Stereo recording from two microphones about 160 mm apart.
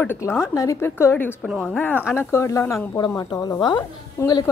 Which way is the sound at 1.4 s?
Centre (ahead or behind).